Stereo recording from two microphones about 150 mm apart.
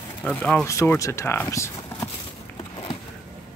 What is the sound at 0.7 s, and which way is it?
Speech, 20° left (ahead or behind).